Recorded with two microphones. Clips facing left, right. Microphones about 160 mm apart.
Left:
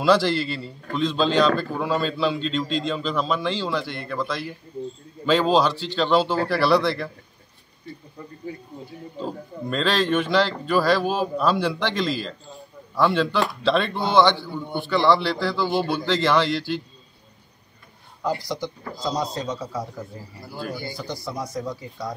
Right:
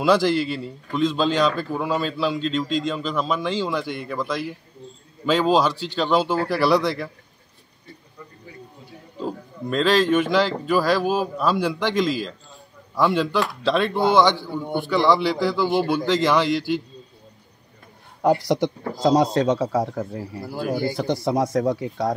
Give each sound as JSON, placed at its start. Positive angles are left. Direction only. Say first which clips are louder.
{"t": 0.0, "sound": "speech", "louder": "right 1 dB", "side_deg": -10}
{"t": 9.2, "sound": "speech", "louder": "right 2 dB", "side_deg": -5}
{"t": 18.2, "sound": "speech", "louder": "right 7 dB", "side_deg": -70}